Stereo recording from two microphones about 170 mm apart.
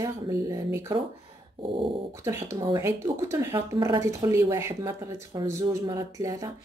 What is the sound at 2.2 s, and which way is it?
Speech, 15° right (ahead or behind).